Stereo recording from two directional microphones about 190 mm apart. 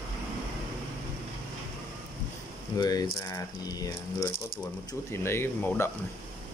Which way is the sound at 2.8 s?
20° left (ahead or behind).